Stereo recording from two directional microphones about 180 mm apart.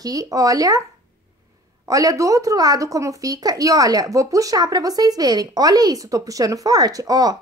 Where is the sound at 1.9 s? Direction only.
20° right (ahead or behind).